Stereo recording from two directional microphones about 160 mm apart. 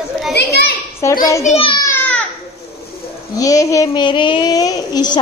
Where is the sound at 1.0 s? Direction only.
15° left (ahead or behind).